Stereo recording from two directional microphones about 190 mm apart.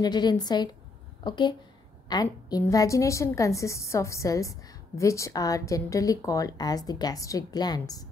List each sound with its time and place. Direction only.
0.0 s a woman's voice: 20° left (ahead or behind)